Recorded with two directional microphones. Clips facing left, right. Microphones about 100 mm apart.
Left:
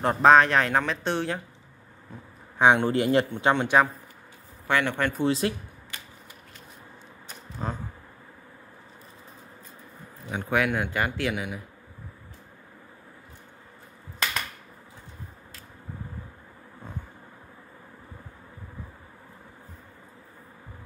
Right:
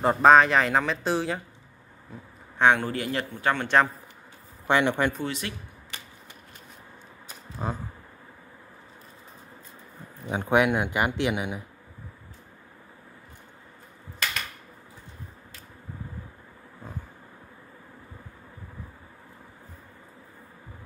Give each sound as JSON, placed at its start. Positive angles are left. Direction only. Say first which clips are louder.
{"t": 0.0, "sound": "speech", "louder": "right 1 dB", "side_deg": 0}
{"t": 2.8, "sound": "a man's voice", "louder": "left 7 dB", "side_deg": 25}
{"t": 4.6, "sound": "speech", "louder": "right 2 dB", "side_deg": -20}
{"t": 5.2, "sound": "speech", "louder": "left 8 dB", "side_deg": 35}
{"t": 7.6, "sound": "speech", "louder": "right 1 dB", "side_deg": -5}
{"t": 10.3, "sound": "speech", "louder": "right 3 dB", "side_deg": -25}